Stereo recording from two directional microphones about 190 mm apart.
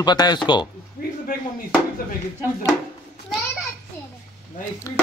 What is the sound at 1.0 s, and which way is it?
Speech, 50° left (ahead or behind).